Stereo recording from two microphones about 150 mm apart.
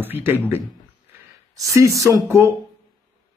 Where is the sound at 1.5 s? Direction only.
20° right (ahead or behind).